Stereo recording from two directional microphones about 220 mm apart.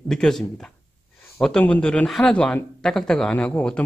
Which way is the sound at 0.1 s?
Centre (ahead or behind).